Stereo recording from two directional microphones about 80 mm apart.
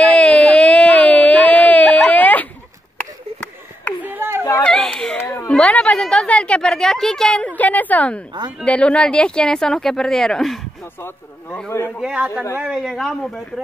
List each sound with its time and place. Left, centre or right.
0.0 s a sound: centre
4.0 s a sound: right
4.6 s baby cry: centre
5.5 s a woman's voice: centre
11.0 s speech: left
12.0 s a man's voice: centre
12.9 s speech: centre